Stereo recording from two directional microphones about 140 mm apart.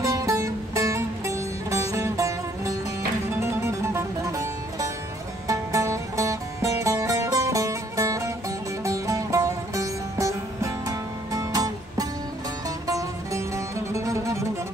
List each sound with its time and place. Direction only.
0.0 s music: 25° right (ahead or behind)